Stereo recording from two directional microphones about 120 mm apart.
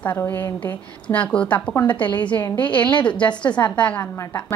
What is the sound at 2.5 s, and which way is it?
A woman's voice, 15° left (ahead or behind).